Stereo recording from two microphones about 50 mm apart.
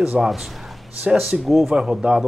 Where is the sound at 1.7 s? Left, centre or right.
Centre.